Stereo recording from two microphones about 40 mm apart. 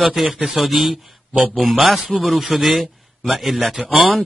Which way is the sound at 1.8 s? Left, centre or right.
Centre.